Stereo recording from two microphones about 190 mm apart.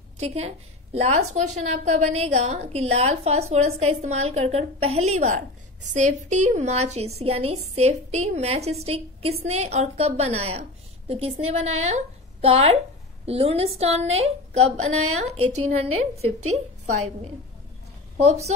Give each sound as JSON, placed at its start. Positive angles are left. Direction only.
{"t": 0.2, "sound": "a woman's voice", "side_deg": -35}
{"t": 18.1, "sound": "a woman's voice", "side_deg": -35}